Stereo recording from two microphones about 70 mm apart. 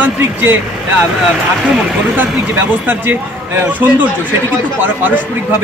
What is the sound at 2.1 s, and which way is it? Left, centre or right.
A man's voice, right.